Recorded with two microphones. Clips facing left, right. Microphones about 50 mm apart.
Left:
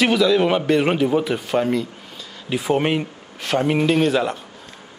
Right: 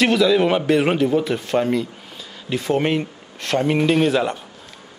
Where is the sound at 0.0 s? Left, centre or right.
Centre.